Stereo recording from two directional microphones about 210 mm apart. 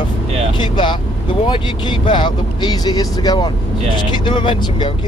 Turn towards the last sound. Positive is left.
turn(degrees=25)  # may be behind; listen again after turning